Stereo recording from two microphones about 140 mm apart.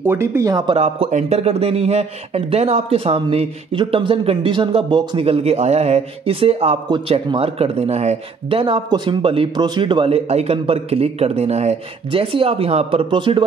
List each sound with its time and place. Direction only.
0.0 s speech: 15° right (ahead or behind)
0.7 s a man's voice: 45° right (ahead or behind)